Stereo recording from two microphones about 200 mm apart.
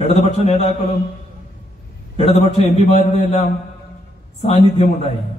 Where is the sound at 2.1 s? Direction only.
35° left (ahead or behind).